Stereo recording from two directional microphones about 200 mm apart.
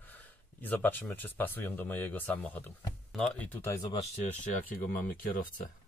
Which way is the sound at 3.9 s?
30° left (ahead or behind).